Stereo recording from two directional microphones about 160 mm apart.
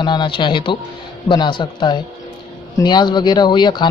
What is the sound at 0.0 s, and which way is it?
Speech, 30° left (ahead or behind).